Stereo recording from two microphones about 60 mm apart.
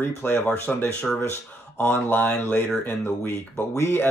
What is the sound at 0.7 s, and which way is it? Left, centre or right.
Speech, centre.